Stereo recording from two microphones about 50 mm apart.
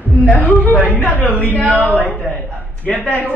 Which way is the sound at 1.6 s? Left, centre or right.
Right.